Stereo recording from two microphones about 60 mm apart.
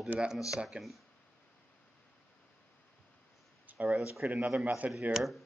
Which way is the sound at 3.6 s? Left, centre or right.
Right.